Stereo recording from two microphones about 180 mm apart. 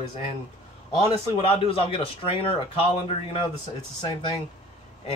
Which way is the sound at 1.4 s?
30° left (ahead or behind).